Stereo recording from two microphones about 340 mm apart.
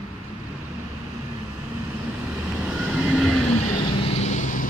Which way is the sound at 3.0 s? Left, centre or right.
Centre.